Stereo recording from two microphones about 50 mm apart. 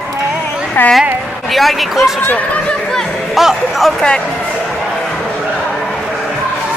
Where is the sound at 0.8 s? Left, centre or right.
Left.